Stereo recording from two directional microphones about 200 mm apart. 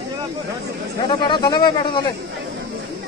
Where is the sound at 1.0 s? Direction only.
25° left (ahead or behind).